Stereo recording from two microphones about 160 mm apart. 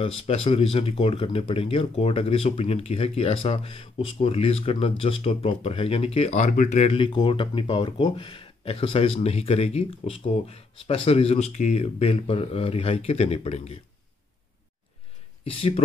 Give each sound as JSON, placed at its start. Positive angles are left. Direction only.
{"t": 0.0, "sound": "speech", "side_deg": 35}
{"t": 15.4, "sound": "speech", "side_deg": 40}